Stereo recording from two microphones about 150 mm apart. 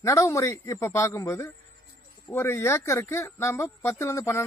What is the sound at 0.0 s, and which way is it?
Speech, 20° left (ahead or behind).